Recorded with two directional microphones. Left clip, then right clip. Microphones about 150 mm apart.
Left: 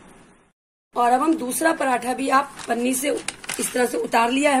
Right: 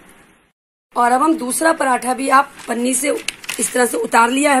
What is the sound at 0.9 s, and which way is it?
Speech, 45° right (ahead or behind).